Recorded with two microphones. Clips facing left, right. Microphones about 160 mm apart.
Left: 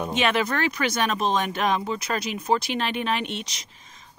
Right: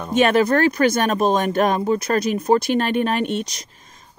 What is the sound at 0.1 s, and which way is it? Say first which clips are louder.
Speech: right 10 dB; 45° right (ahead or behind).